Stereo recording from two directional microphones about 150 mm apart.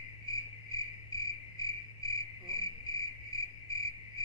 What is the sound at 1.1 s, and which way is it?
Cricket, 25° left (ahead or behind).